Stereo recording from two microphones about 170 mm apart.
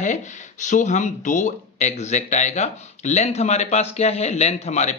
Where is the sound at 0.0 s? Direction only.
45° left (ahead or behind).